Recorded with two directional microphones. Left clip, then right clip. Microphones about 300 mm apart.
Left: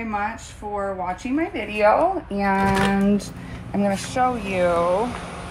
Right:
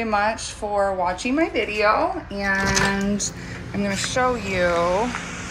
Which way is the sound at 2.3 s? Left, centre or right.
Centre.